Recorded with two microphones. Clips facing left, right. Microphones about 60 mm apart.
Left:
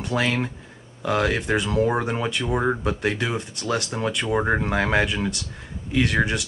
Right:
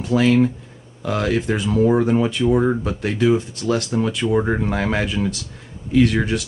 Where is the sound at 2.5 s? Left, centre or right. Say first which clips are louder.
Right 4 dB; centre.